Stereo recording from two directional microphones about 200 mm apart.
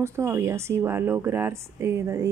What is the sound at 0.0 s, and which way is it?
Speech, 15° right (ahead or behind).